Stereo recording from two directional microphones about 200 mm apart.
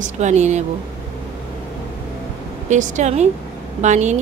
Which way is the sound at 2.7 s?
40° right (ahead or behind).